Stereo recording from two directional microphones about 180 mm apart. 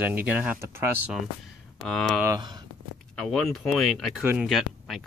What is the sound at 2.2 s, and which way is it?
Speech, 20° right (ahead or behind).